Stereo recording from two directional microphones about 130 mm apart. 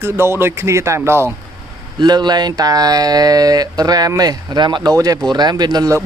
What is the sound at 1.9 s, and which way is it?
Speech, 35° right (ahead or behind).